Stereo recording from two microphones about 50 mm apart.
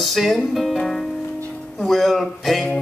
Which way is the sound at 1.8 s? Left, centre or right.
Centre.